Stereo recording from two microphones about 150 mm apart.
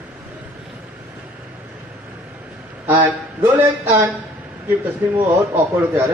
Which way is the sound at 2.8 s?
10° right (ahead or behind).